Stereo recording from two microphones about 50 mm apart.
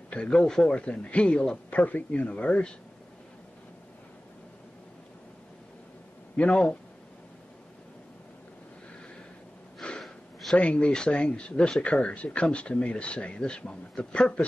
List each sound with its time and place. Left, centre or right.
0.1 s speech: centre
1.7 s speech: left
6.3 s speech: left
9.8 s snort: centre
10.5 s speech: left